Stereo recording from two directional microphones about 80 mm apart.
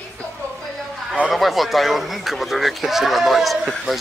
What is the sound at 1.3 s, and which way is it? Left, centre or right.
Speech, centre.